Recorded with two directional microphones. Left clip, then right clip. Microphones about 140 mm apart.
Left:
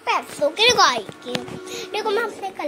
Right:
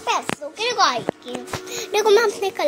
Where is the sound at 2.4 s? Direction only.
90° right.